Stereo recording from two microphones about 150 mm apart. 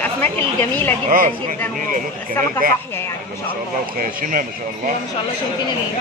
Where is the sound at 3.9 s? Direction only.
60° right (ahead or behind).